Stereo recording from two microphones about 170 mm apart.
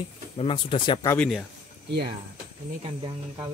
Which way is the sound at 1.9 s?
70° right (ahead or behind).